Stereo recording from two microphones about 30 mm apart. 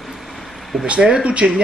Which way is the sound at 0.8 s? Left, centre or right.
Right.